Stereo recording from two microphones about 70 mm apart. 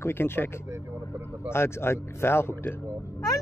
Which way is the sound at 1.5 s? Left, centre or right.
Left.